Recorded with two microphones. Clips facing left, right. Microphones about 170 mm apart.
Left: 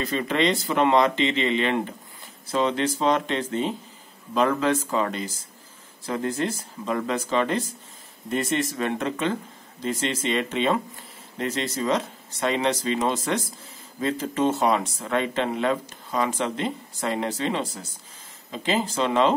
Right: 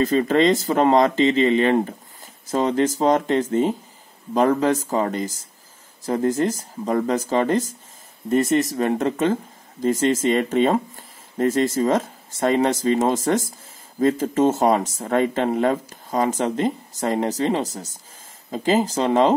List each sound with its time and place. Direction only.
0.0 s speech: 45° right (ahead or behind)